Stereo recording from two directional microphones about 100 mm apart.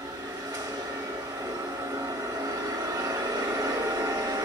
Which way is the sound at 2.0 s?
35° right (ahead or behind).